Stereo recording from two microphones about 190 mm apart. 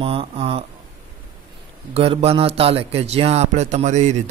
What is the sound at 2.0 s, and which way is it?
A man's voice, 30° right (ahead or behind).